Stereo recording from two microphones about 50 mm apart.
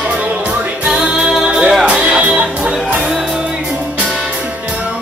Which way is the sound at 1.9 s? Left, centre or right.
Right.